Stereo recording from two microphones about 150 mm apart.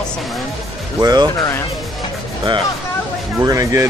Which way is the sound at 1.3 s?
25° left (ahead or behind).